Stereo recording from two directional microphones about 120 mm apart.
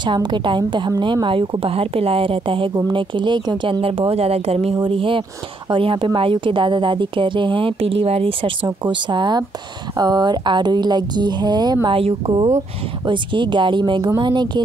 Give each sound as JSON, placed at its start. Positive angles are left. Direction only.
{"t": 0.0, "sound": "a woman's voice", "side_deg": -40}